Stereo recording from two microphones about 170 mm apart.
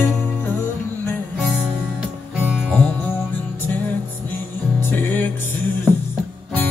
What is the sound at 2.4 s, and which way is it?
Music, 5° right (ahead or behind).